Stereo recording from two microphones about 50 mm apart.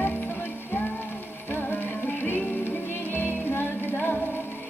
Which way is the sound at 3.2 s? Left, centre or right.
Left.